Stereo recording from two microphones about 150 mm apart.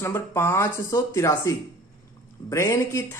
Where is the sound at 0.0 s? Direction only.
15° left (ahead or behind).